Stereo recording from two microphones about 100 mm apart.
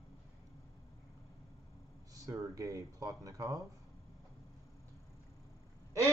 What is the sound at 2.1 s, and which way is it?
Speech, 35° right (ahead or behind).